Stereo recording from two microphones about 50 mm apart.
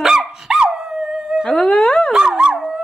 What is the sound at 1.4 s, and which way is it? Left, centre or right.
Music, centre.